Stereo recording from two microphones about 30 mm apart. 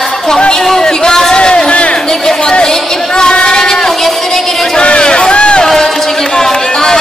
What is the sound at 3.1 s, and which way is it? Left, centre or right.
Music, left.